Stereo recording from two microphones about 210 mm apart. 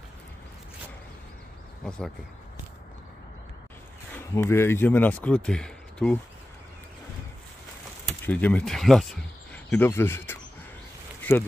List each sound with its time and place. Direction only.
4.1 s speech: 10° left (ahead or behind)
8.3 s speech: 5° left (ahead or behind)